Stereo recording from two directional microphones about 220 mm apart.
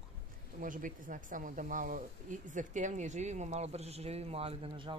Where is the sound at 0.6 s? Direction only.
35° right (ahead or behind).